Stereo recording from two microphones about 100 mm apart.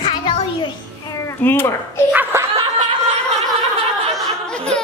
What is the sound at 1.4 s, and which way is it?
Speech, 20° left (ahead or behind).